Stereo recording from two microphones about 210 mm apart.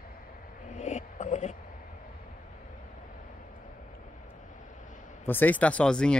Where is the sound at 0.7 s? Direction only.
35° left (ahead or behind).